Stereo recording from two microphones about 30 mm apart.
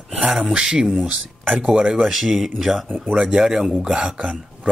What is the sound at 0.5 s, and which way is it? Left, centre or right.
Speech, right.